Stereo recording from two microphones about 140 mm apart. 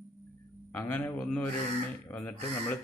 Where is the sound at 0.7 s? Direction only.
15° left (ahead or behind).